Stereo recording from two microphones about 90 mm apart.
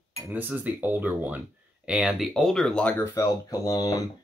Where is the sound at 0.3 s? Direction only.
20° right (ahead or behind).